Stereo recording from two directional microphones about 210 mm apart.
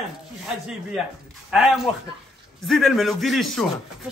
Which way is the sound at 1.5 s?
Centre (ahead or behind).